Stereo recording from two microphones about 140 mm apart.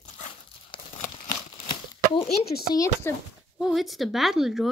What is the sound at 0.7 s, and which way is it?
Crumpling, 35° left (ahead or behind).